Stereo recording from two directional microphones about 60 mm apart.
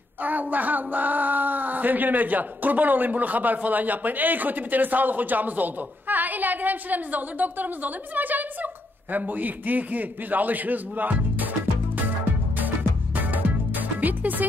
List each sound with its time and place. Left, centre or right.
0.2 s speech: right
12.5 s music: right